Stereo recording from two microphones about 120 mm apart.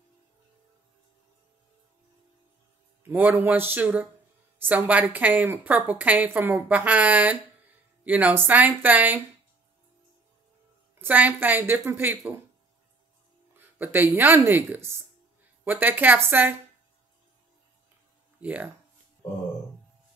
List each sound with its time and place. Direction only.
3.0 s a woman's voice: 15° right (ahead or behind)
11.0 s a woman's voice: 15° right (ahead or behind)
13.6 s a woman's voice: 20° right (ahead or behind)
18.4 s speech: 10° right (ahead or behind)